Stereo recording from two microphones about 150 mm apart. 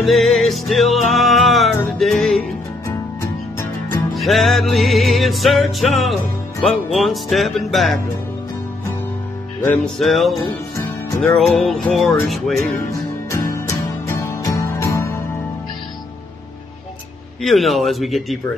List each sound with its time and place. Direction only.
0.0 s music: centre (ahead or behind)
4.1 s music: centre (ahead or behind)
9.9 s music: centre (ahead or behind)
11.3 s music: 5° left (ahead or behind)
13.3 s music: 20° left (ahead or behind)
17.4 s music: centre (ahead or behind)